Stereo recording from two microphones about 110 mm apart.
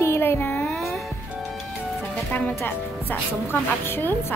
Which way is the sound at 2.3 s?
15° left (ahead or behind).